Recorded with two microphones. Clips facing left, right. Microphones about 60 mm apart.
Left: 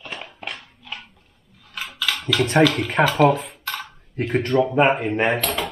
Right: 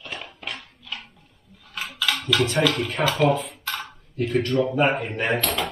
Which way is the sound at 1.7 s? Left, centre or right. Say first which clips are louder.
Even; centre.